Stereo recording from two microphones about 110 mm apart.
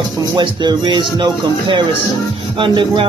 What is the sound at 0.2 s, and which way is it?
Speech, 40° right (ahead or behind).